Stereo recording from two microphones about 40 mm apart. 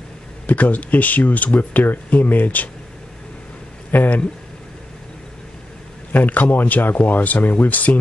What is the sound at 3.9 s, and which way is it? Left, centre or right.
Speech, left.